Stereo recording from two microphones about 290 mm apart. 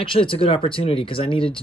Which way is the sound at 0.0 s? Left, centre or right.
Centre.